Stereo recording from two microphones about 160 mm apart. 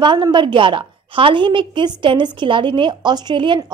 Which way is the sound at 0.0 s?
30° right (ahead or behind).